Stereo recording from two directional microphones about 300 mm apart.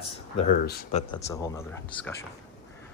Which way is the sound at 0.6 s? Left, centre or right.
Left.